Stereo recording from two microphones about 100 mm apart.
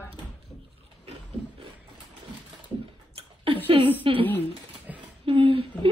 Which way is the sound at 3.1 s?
60° right (ahead or behind).